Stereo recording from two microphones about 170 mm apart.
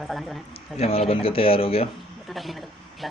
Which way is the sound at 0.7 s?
35° left (ahead or behind).